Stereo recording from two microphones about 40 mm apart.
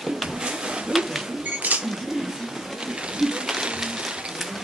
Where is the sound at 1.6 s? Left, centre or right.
Right.